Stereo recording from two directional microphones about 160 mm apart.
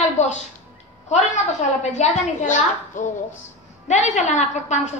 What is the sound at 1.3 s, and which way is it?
A woman's voice, 45° left (ahead or behind).